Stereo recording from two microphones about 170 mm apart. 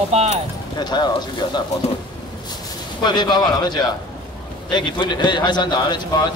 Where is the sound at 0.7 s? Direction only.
25° left (ahead or behind).